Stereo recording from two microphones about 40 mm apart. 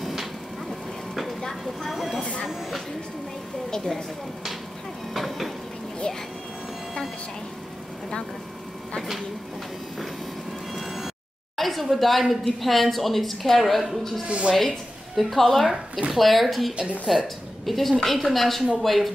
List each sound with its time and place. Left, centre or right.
0.0 s a sound: centre
3.7 s a woman's voice: centre
5.1 s a sound: centre
10.7 s vehicle: centre
11.5 s speech: centre
14.2 s a woman's voice: right
14.5 s speech: centre
16.7 s a woman's voice: right
17.6 s speech: centre